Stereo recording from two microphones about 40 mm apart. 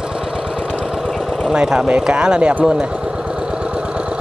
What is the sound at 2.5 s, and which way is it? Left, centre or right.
Speech, right.